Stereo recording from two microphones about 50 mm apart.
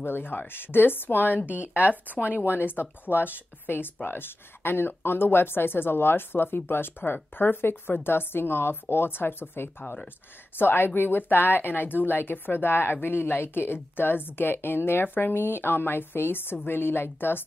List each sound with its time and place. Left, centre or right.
0.0 s speech: left
1.8 s speech: right
2.5 s speech: left